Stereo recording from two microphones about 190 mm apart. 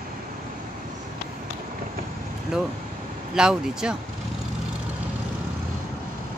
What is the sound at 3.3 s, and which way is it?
Speech, 5° right (ahead or behind).